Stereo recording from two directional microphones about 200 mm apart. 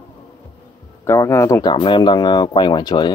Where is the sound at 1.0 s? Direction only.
15° left (ahead or behind).